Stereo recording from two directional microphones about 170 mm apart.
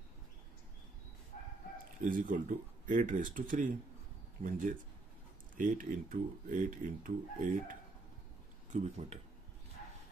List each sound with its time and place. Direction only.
1.3 s crowing: 45° left (ahead or behind)
2.0 s speech: 50° right (ahead or behind)
8.7 s speech: 40° right (ahead or behind)